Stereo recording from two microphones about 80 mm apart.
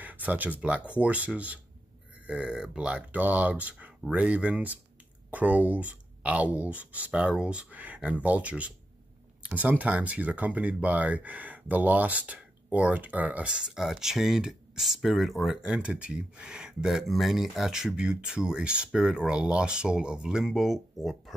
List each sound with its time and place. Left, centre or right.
0.0 s speech: right; by 21.2 s centre